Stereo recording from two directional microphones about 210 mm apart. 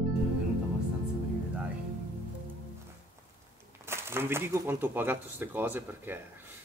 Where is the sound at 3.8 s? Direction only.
10° right (ahead or behind).